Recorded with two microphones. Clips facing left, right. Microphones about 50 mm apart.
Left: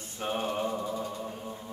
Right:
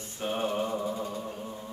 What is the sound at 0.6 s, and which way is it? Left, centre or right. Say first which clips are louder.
Speech: right 1 dB; centre.